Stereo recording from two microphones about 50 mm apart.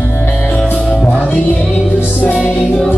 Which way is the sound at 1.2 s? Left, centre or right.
Left.